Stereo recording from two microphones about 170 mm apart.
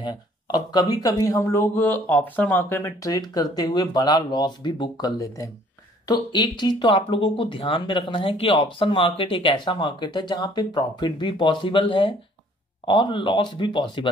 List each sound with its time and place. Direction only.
0.0 s speech: 25° left (ahead or behind)